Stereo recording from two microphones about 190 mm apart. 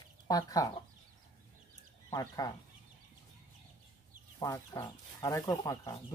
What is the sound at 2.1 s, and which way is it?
Speech, 20° left (ahead or behind).